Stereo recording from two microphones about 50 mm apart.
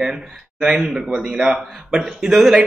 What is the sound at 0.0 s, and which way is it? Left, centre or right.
Speech, centre.